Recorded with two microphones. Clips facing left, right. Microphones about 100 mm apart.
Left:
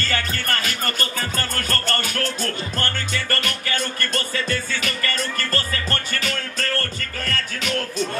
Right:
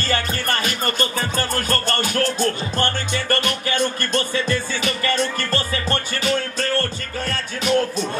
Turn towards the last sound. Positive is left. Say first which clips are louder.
# right 3 dB
turn(degrees=-25)  # may be behind; listen again after turning